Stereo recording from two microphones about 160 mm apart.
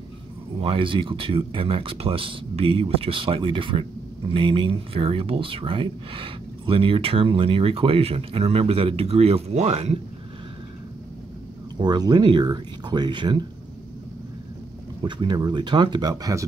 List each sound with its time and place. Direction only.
0.6 s speech: 35° right (ahead or behind)
11.8 s speech: 25° right (ahead or behind)
15.0 s speech: 30° right (ahead or behind)